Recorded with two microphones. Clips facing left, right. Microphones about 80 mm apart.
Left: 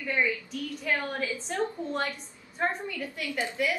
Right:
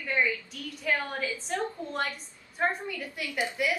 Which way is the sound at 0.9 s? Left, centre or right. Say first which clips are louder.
Right 1 dB; centre.